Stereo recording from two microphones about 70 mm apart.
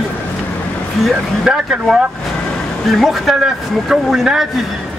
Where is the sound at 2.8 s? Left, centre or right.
Centre.